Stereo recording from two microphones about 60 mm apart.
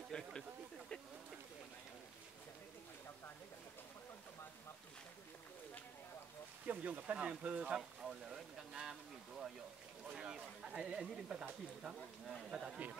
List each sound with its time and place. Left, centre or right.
0.1 s a sound: centre
6.6 s speech: right
8.0 s speech: centre